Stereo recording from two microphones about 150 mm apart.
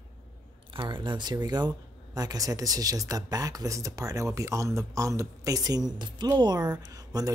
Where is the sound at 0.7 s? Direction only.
30° right (ahead or behind).